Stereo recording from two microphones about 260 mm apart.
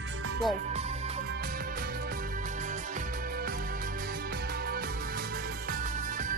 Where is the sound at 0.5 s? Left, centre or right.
Right.